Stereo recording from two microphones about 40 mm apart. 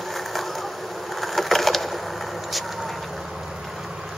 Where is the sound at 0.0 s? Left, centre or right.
Centre.